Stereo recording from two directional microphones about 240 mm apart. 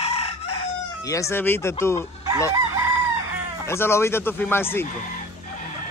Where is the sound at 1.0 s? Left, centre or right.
Centre.